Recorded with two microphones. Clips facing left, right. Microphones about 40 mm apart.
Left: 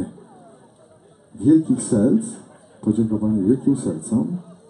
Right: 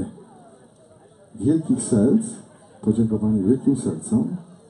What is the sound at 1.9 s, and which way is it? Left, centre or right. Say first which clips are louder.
A man's voice: even; centre.